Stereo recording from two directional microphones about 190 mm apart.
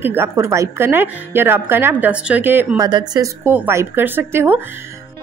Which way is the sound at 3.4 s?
10° right (ahead or behind).